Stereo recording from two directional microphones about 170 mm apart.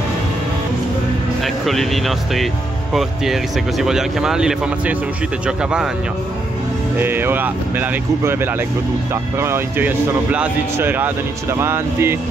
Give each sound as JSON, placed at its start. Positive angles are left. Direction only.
{"t": 1.4, "sound": "speech", "side_deg": 0}
{"t": 7.0, "sound": "speech", "side_deg": -10}